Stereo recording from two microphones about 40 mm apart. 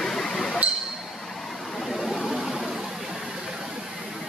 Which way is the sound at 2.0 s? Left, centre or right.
Centre.